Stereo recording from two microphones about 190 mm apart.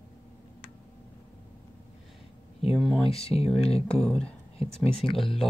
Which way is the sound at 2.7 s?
Centre (ahead or behind).